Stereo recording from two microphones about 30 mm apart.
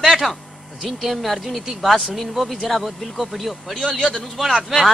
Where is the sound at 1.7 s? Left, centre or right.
Centre.